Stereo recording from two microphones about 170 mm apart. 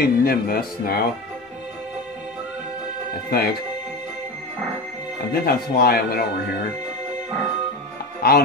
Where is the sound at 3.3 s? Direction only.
65° left (ahead or behind).